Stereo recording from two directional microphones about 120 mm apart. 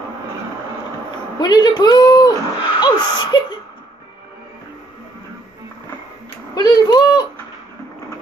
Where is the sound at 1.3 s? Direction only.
35° left (ahead or behind).